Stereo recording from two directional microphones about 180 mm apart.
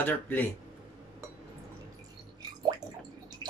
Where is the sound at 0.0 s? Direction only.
10° left (ahead or behind).